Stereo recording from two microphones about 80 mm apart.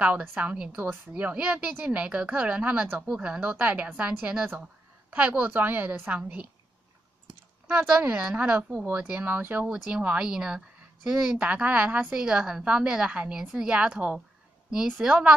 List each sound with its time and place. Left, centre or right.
0.0 s a woman's voice: centre
7.7 s a woman's voice: centre
9.7 s a woman's voice: centre